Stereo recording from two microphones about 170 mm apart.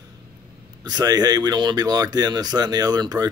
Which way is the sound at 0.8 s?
25° right (ahead or behind).